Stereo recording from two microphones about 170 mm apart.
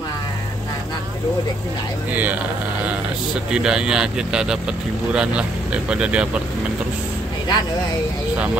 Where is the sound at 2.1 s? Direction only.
10° right (ahead or behind).